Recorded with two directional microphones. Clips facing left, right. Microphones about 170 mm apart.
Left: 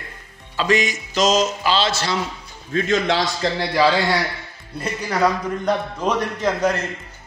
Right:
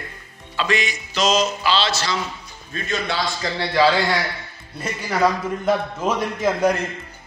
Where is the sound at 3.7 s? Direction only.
10° left (ahead or behind).